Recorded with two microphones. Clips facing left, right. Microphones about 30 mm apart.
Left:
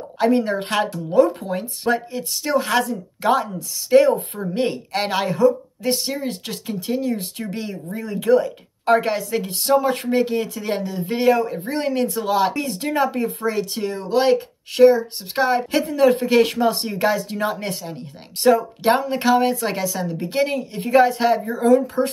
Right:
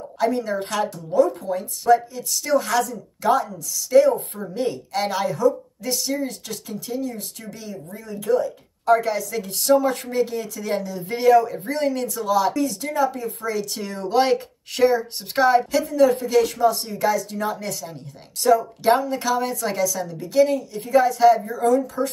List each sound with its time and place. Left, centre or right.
0.2 s a woman's voice: left
2.4 s a woman's voice: left
9.3 s a woman's voice: left
11.7 s a woman's voice: left
13.7 s speech: centre
14.0 s speech: centre
15.7 s a woman's voice: left
18.8 s a woman's voice: left